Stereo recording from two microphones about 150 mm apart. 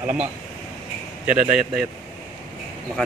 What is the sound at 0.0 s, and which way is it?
Speech, 10° right (ahead or behind).